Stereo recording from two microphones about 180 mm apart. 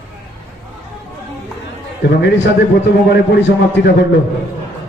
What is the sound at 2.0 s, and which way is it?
A man's voice, 75° left (ahead or behind).